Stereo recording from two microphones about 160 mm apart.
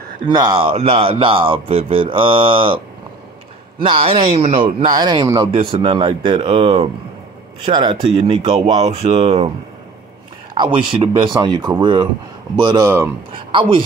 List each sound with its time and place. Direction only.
0.3 s speech: 25° right (ahead or behind)
3.8 s speech: 35° right (ahead or behind)
10.5 s speech: 30° right (ahead or behind)
13.3 s speech: 30° right (ahead or behind)